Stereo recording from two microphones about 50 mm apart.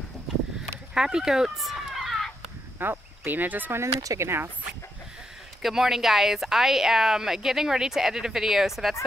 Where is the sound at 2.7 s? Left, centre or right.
Right.